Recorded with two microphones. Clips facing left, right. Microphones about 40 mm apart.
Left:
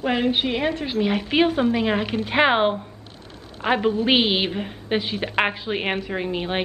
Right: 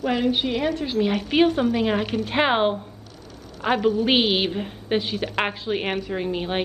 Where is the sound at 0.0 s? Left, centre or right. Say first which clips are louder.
Left 1 dB; left.